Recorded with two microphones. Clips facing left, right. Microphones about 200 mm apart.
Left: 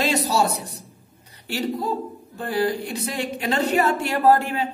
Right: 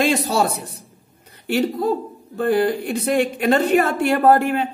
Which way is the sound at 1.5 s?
50° right (ahead or behind).